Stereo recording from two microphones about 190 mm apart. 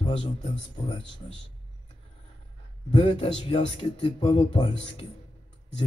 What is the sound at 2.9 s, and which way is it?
Speech, 30° left (ahead or behind).